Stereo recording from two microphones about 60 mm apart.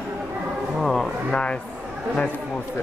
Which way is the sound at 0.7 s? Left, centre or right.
Centre.